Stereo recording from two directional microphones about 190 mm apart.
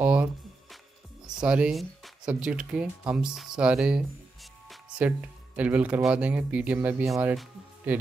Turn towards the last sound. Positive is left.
turn(degrees=0)  # may be behind; listen again after turning